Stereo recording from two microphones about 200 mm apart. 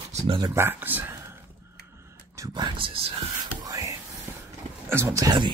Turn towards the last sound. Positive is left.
turn(degrees=-20)  # may be behind; listen again after turning